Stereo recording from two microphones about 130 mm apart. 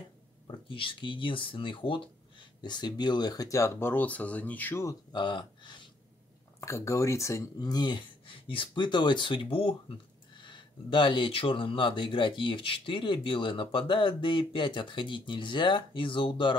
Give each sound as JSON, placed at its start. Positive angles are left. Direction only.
{"t": 0.5, "sound": "speech", "side_deg": 40}
{"t": 5.1, "sound": "speech", "side_deg": 35}
{"t": 6.6, "sound": "speech", "side_deg": 25}